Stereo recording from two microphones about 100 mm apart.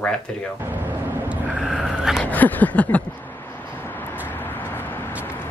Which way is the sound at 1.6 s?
5° right (ahead or behind).